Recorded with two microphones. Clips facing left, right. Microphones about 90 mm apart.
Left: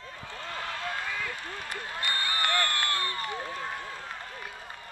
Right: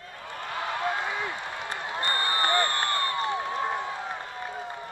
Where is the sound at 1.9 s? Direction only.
70° right (ahead or behind).